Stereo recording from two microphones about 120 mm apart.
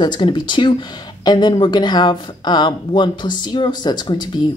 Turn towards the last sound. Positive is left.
turn(degrees=40)  # may be behind; listen again after turning